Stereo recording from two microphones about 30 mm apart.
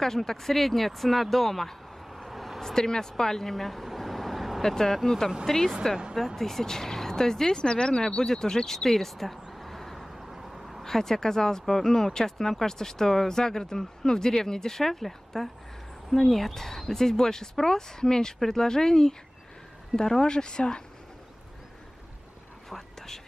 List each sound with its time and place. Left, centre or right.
0.0 s speech: centre
2.0 s vehicle: centre
2.6 s vehicle: left; by 4.6 s centre
4.6 s speech: centre
10.0 s vehicle: centre
10.8 s speech: centre; by 20.8 s left
22.7 s whispering: centre